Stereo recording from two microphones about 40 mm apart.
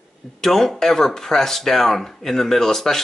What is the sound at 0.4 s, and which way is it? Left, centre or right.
A man's voice, centre.